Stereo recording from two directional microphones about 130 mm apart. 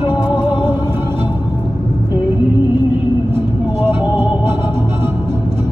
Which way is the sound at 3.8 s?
15° right (ahead or behind).